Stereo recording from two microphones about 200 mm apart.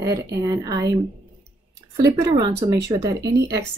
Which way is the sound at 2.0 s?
15° right (ahead or behind).